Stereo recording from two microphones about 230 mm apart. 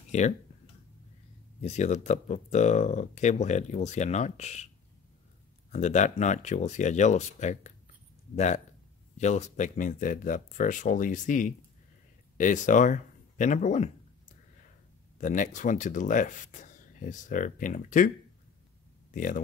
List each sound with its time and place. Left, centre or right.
0.1 s speech: left
1.6 s speech: left
5.7 s speech: left
9.2 s speech: left
15.1 s speech: left
19.1 s speech: left